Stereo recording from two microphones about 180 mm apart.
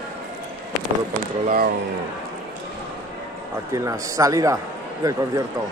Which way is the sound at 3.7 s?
20° right (ahead or behind).